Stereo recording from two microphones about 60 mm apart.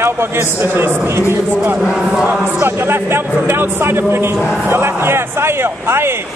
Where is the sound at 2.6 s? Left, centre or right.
Right.